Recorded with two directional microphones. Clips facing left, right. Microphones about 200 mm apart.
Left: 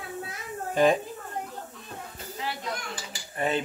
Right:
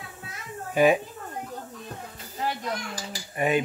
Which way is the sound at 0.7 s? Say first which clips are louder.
Right 2 dB; 10° right (ahead or behind).